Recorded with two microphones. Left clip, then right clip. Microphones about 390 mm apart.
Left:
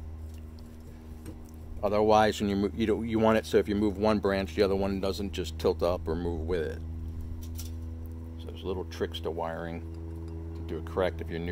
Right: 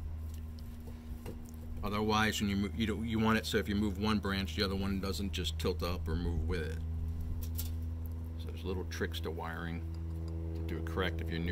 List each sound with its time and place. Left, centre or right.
1.8 s speech: centre
8.5 s speech: centre